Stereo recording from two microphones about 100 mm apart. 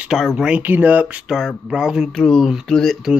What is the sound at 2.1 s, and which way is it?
Speech, 5° left (ahead or behind).